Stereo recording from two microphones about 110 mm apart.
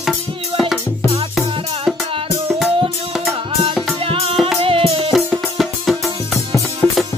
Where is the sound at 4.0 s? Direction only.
60° right (ahead or behind).